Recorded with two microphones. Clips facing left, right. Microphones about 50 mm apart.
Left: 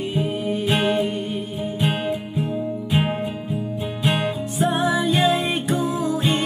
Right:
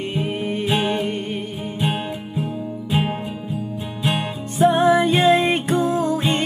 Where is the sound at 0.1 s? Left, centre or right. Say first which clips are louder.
Left 1 dB; right.